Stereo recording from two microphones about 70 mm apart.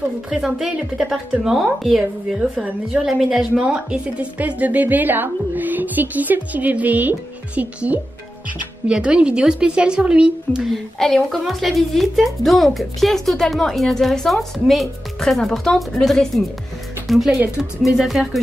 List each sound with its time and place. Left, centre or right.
0.3 s speech: centre
2.3 s speech: centre
3.1 s speech: centre
3.6 s a woman's voice: centre
10.7 s a woman's voice: centre
17.9 s a woman's voice: centre